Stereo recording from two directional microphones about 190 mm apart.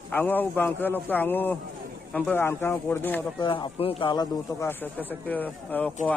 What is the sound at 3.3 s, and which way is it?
Speech, 25° left (ahead or behind).